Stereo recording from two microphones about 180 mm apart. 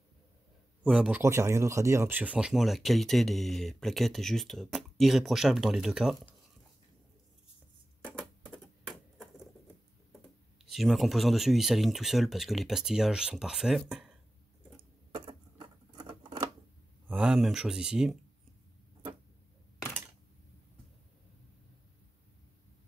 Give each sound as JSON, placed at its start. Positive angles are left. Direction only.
{"t": 0.8, "sound": "speech", "side_deg": -5}
{"t": 1.2, "sound": "speech", "side_deg": -15}
{"t": 8.2, "sound": "typewriter", "side_deg": 5}
{"t": 10.6, "sound": "speech", "side_deg": 0}
{"t": 15.1, "sound": "patter", "side_deg": -30}
{"t": 17.1, "sound": "speech", "side_deg": -5}